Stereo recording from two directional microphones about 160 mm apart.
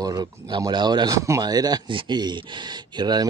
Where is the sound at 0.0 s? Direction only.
25° right (ahead or behind).